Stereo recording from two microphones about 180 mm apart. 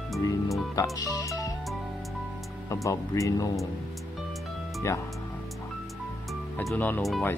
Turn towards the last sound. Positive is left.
turn(degrees=5)  # may be behind; listen again after turning